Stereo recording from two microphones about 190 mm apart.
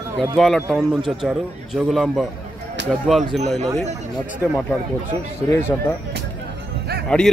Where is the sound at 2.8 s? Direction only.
65° right (ahead or behind).